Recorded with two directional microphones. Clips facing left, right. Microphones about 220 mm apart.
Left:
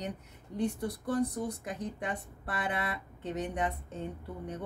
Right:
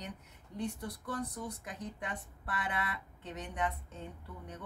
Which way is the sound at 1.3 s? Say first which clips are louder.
Left 7 dB; 35° left (ahead or behind).